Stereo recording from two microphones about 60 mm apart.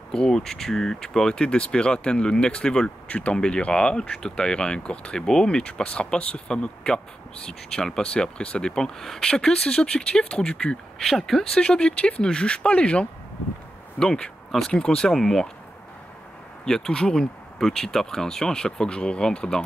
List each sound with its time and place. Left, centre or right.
0.1 s speech: centre
11.0 s speech: centre
11.5 s speech: centre
16.6 s speech: centre